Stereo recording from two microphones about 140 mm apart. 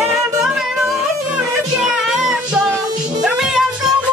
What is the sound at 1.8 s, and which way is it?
Cat, 5° right (ahead or behind).